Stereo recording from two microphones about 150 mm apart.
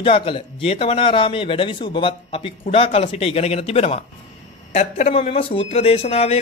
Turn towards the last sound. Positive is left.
turn(degrees=40)  # may be behind; listen again after turning